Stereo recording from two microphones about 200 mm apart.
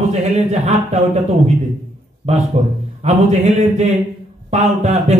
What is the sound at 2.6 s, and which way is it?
A man's voice, 35° right (ahead or behind).